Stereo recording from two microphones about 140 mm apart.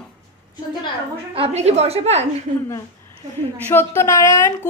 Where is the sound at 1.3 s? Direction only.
50° right (ahead or behind).